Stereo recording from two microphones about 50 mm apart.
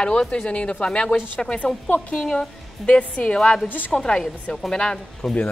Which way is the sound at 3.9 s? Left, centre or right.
Centre.